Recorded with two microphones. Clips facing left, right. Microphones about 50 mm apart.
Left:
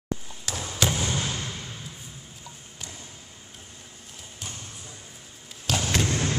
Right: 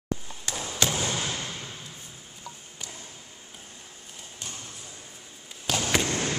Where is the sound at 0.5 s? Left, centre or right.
Centre.